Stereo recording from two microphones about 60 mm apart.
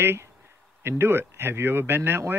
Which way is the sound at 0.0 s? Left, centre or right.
Right.